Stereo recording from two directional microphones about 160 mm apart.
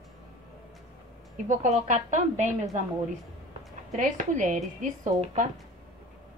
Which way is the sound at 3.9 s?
50° right (ahead or behind).